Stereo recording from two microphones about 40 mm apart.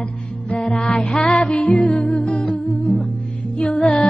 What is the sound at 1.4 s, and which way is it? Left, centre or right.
Music, left.